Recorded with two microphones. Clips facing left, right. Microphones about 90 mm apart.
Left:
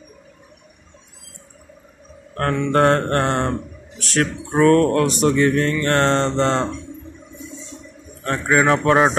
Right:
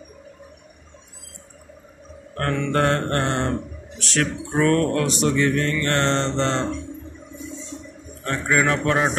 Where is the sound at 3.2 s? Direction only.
45° left (ahead or behind).